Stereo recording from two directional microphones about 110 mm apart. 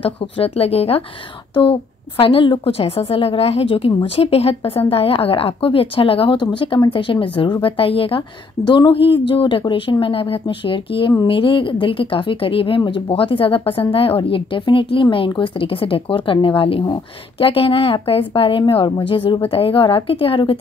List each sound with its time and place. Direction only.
0.0 s a woman's voice: 65° left (ahead or behind)
1.5 s a woman's voice: 55° left (ahead or behind)